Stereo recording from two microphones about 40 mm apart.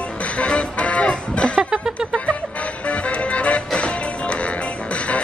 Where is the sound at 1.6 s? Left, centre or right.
Centre.